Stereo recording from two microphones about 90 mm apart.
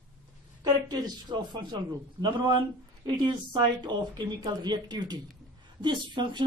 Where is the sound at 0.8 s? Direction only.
50° right (ahead or behind).